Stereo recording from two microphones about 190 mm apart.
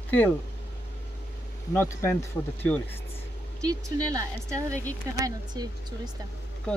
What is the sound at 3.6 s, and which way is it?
Speech, 20° right (ahead or behind).